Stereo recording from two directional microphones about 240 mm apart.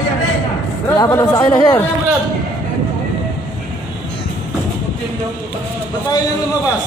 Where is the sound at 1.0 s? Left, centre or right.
Centre.